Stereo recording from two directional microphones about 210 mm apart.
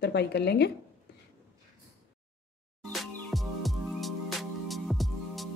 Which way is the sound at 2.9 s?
Centre (ahead or behind).